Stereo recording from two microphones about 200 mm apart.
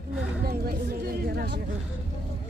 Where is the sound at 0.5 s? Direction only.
45° right (ahead or behind).